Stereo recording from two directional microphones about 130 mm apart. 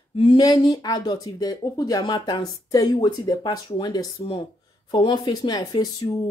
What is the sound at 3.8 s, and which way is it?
Speech, 25° left (ahead or behind).